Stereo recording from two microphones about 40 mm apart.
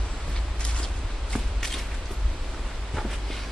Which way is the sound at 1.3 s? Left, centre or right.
Centre.